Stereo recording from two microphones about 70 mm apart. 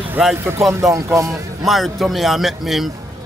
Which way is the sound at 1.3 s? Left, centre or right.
Centre.